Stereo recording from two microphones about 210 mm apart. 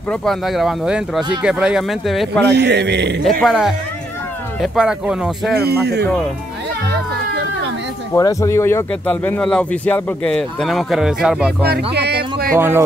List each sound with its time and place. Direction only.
0.1 s speech: centre (ahead or behind)
2.4 s a man's voice: 55° right (ahead or behind)
3.3 s speech: centre (ahead or behind)
5.6 s speech: 50° right (ahead or behind)
8.1 s speech: 15° left (ahead or behind); by 11.5 s 5° right (ahead or behind)
11.6 s music: 50° right (ahead or behind)
12.5 s speech: 10° right (ahead or behind)